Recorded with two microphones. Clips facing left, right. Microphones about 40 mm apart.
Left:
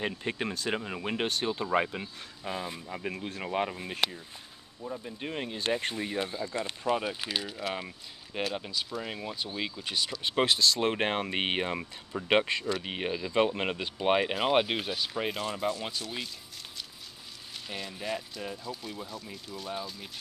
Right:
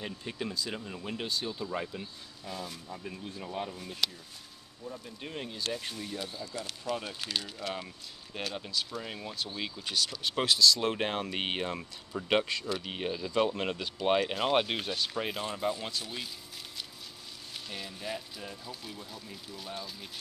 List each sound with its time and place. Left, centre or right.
0.0 s speech: left
3.0 s speech: left
3.7 s speech: left
4.9 s speech: left
5.8 s speech: left; by 15.8 s centre
17.6 s speech: centre